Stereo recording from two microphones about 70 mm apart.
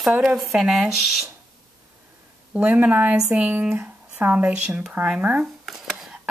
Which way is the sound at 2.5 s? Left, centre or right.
Right.